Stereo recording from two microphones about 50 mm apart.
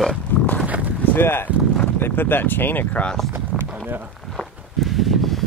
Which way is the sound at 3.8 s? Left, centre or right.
Right.